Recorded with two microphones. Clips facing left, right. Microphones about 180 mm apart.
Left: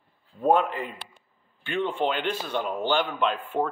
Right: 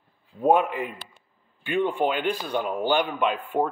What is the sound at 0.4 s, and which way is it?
Speech, 15° right (ahead or behind).